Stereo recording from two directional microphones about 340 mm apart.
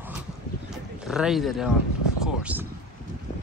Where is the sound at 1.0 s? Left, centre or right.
Centre.